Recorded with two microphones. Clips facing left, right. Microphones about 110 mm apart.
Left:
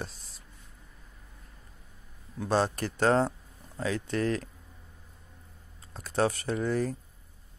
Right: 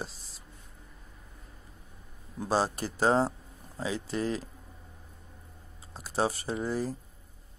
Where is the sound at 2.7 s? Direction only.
5° right (ahead or behind).